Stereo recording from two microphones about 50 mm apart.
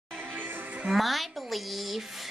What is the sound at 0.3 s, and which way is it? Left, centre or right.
Music, right.